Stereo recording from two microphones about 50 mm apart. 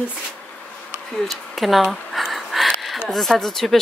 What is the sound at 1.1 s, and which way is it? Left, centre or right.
Speech, centre.